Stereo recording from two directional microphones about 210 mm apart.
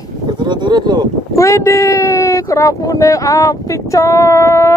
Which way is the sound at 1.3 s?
15° left (ahead or behind).